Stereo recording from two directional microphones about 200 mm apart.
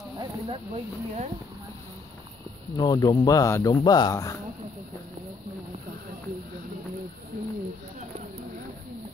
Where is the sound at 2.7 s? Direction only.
20° left (ahead or behind).